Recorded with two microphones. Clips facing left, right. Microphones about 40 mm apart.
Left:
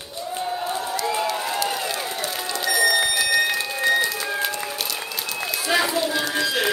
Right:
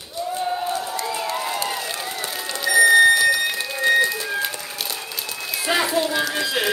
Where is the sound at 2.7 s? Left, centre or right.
Right.